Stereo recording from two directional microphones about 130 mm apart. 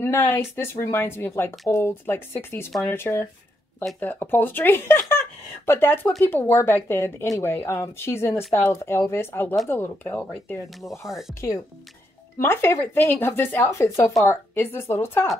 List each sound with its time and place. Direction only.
0.0 s speech: 20° left (ahead or behind)
10.7 s speech: 5° right (ahead or behind)
12.4 s speech: 20° left (ahead or behind)